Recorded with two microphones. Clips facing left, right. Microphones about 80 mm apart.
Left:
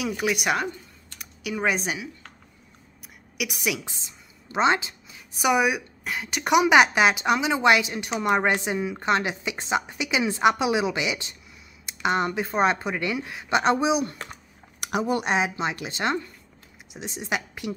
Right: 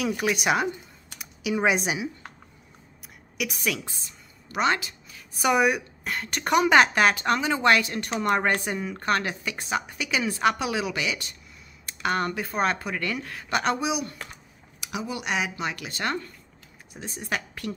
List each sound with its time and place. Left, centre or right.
0.0 s speech: centre
1.1 s computer keyboard: centre
3.3 s a woman's voice: centre
5.4 s a woman's voice: centre
9.0 s speech: centre
14.8 s speech: left
15.2 s speech: left; by 17.7 s centre